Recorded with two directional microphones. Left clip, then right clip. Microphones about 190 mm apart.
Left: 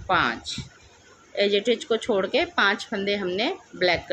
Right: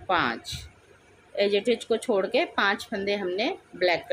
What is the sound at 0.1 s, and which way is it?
A woman's voice, centre (ahead or behind).